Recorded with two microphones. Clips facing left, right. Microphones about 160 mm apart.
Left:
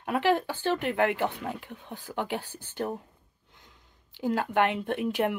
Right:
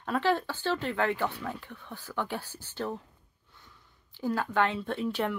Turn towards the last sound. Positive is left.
turn(degrees=15)  # may be behind; listen again after turning